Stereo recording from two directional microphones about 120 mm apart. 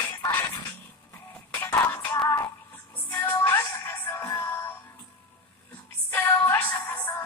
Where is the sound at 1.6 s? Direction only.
20° left (ahead or behind).